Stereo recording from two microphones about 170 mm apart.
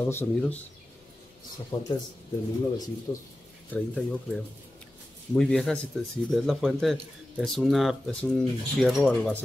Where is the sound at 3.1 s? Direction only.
20° left (ahead or behind).